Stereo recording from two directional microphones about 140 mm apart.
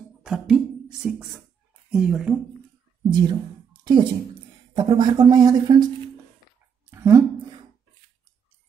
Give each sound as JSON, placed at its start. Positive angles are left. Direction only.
{"t": 0.2, "sound": "beatboxing", "side_deg": -5}
{"t": 1.9, "sound": "speech", "side_deg": -5}
{"t": 3.1, "sound": "speech", "side_deg": -30}
{"t": 6.9, "sound": "a sound", "side_deg": -20}